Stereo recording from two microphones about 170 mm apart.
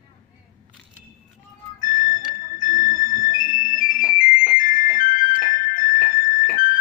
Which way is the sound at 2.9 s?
20° right (ahead or behind).